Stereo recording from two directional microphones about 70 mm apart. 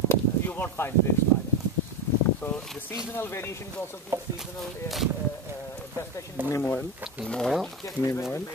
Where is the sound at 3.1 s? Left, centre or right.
Left.